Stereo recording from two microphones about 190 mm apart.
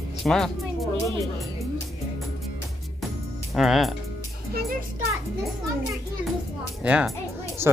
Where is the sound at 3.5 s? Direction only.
Centre (ahead or behind).